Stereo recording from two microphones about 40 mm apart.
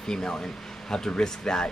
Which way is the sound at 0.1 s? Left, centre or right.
Centre.